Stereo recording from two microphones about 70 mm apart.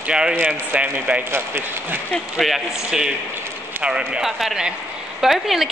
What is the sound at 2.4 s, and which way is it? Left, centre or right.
A woman's voice, centre.